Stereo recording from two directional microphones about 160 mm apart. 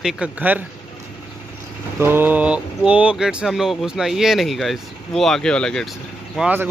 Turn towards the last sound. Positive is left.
turn(degrees=-10)  # may be behind; listen again after turning